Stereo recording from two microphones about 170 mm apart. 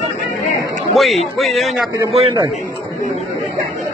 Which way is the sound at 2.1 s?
35° right (ahead or behind).